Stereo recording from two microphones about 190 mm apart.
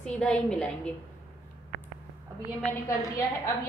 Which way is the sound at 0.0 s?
5° left (ahead or behind).